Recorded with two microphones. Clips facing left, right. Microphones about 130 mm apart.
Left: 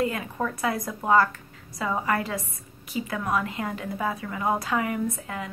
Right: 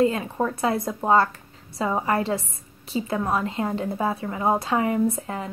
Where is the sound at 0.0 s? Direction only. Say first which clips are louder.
Right 5 dB; 25° right (ahead or behind).